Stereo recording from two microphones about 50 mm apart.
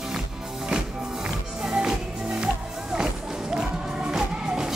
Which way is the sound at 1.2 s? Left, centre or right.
Centre.